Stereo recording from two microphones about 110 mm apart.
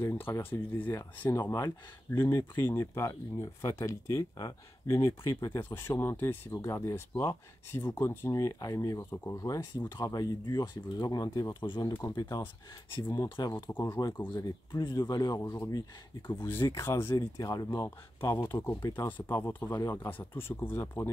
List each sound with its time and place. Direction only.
0.0 s speech: 20° left (ahead or behind)
1.3 s speech: 30° left (ahead or behind)
4.8 s speech: 25° left (ahead or behind)
13.7 s speech: 20° left (ahead or behind)
14.4 s speech: 40° left (ahead or behind)
16.3 s speech: 20° left (ahead or behind); by 17.6 s 35° left (ahead or behind)
17.6 s speech: 25° left (ahead or behind)
19.0 s speech: 20° left (ahead or behind)